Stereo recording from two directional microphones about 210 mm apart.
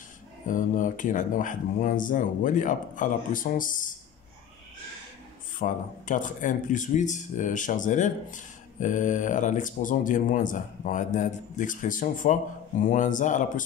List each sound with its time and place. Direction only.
0.5 s speech: 40° left (ahead or behind)
5.6 s speech: 40° left (ahead or behind)